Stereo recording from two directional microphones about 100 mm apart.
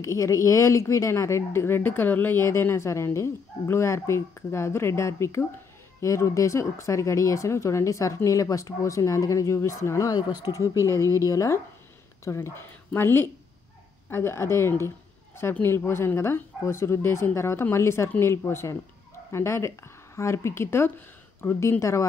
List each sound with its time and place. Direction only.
0.0 s a woman's voice: 30° left (ahead or behind)